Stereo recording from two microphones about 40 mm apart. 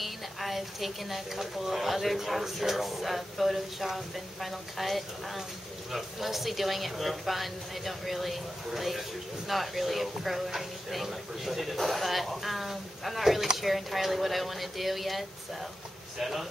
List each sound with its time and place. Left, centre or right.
0.0 s speech: centre